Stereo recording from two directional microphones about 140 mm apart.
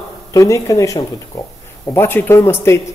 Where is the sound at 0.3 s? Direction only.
25° left (ahead or behind).